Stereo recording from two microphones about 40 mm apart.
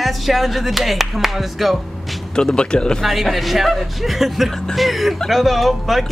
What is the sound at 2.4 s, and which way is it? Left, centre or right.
Speech, left.